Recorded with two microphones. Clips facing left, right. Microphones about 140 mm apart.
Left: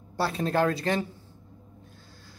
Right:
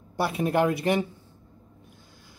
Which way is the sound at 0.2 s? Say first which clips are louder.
Right 2 dB; 15° right (ahead or behind).